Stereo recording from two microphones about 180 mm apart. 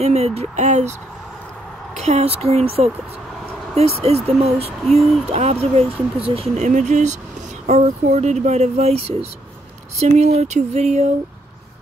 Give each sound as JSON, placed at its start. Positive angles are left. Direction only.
{"t": 0.0, "sound": "speech", "side_deg": -35}
{"t": 2.0, "sound": "speech", "side_deg": -35}